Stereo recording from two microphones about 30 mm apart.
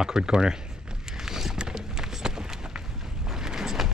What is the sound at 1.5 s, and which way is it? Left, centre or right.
Run, right.